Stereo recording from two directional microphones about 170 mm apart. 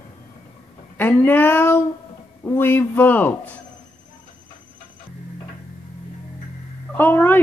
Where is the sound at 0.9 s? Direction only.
10° left (ahead or behind).